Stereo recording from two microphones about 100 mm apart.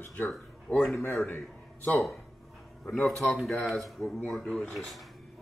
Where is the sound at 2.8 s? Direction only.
5° left (ahead or behind).